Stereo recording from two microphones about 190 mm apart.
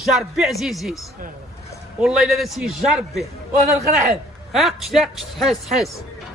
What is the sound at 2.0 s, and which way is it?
Speech, centre (ahead or behind).